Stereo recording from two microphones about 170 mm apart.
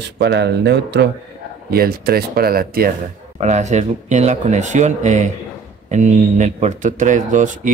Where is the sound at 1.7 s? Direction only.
60° right (ahead or behind).